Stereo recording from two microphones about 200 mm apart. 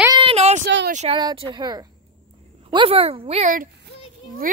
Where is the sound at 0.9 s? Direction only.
30° right (ahead or behind).